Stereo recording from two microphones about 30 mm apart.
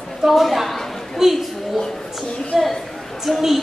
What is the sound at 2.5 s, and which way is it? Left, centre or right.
Speech, centre.